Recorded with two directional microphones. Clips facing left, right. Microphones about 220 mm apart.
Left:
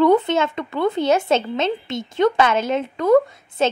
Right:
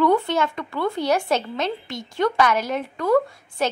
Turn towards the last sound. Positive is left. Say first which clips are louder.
# left 4 dB
turn(degrees=20)  # may be behind; listen again after turning